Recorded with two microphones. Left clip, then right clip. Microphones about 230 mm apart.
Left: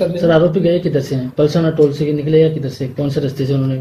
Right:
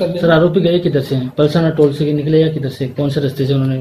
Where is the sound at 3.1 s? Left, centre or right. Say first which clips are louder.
Even; right.